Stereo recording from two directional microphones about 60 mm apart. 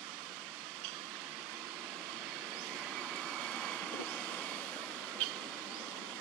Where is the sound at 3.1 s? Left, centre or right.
Centre.